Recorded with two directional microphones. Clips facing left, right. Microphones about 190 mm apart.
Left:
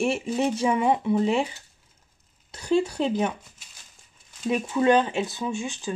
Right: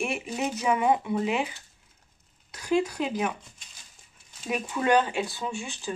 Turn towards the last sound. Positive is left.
turn(degrees=20)  # may be behind; listen again after turning